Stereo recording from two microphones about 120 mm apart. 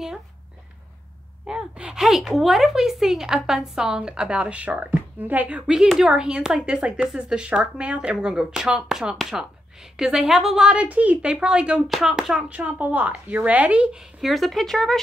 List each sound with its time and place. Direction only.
1.4 s speech: 10° right (ahead or behind)